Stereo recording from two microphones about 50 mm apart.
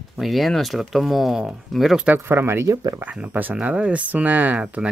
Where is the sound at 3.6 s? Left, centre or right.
Right.